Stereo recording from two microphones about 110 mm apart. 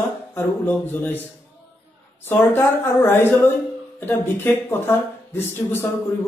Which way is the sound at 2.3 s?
20° left (ahead or behind).